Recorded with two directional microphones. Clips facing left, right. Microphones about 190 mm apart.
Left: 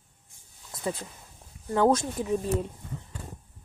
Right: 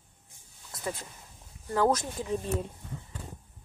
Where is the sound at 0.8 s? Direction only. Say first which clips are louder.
Left 4 dB; 25° left (ahead or behind).